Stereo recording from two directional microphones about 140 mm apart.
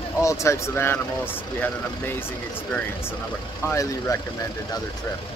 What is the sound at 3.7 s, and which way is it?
Speech, 25° left (ahead or behind).